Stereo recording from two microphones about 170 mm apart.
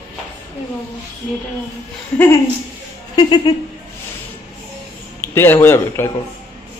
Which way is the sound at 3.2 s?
25° left (ahead or behind).